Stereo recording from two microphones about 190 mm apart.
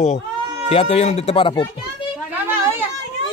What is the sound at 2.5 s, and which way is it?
Children playing, 10° right (ahead or behind).